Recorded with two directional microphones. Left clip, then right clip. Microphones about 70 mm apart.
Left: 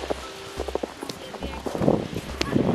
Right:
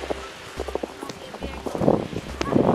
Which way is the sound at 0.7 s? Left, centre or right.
Left.